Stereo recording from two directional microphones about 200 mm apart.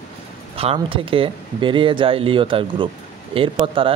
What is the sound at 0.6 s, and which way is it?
Speech, 25° right (ahead or behind).